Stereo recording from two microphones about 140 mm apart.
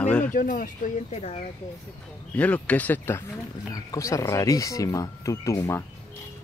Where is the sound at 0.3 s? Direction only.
80° left.